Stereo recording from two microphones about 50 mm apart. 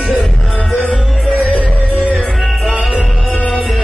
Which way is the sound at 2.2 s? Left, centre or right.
Centre.